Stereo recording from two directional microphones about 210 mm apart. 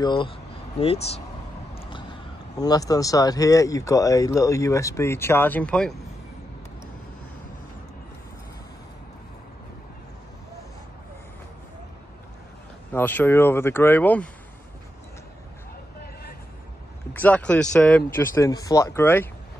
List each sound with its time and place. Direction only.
0.0 s speech: 20° left (ahead or behind)
1.8 s vehicle: 25° left (ahead or behind)
2.6 s speech: 15° left (ahead or behind)
12.9 s speech: 10° left (ahead or behind)
16.0 s vehicle: 50° left (ahead or behind)
17.1 s speech: 10° left (ahead or behind)